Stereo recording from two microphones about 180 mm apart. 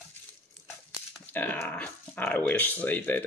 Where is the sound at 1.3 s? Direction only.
10° left (ahead or behind).